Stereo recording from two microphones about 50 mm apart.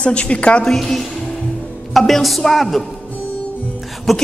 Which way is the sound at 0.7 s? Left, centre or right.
Centre.